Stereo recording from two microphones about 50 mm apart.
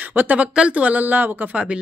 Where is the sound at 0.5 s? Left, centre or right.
Right.